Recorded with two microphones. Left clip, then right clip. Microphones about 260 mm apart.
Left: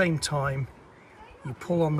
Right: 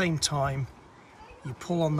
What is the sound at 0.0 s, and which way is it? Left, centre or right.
Speech, centre.